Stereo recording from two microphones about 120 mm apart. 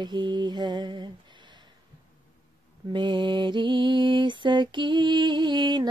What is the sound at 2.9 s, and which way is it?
Mantra, 40° right (ahead or behind).